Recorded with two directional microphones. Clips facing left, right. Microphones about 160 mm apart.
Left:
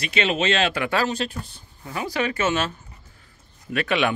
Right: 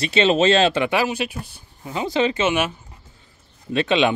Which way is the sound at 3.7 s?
25° right (ahead or behind).